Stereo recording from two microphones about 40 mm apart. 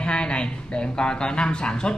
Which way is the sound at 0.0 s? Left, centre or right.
Left.